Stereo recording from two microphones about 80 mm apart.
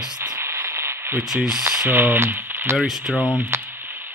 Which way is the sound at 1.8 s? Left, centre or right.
Right.